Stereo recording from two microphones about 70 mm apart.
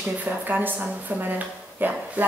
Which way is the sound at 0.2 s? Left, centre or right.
Right.